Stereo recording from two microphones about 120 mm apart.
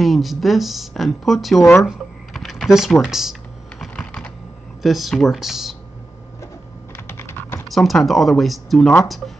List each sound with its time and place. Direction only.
0.0 s speech: centre (ahead or behind)
1.9 s computer keyboard: centre (ahead or behind)
3.8 s typing: 10° left (ahead or behind)
4.8 s speech: centre (ahead or behind)
7.1 s typing: 20° left (ahead or behind)
7.7 s speech: centre (ahead or behind)